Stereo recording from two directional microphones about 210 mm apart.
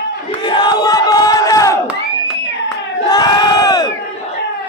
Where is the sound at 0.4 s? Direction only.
20° left (ahead or behind).